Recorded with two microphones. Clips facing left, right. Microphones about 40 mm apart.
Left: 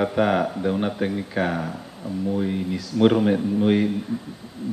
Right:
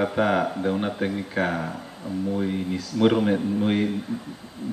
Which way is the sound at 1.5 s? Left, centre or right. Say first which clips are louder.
Left 1 dB; centre.